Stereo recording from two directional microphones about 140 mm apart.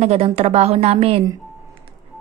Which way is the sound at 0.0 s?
50° right (ahead or behind).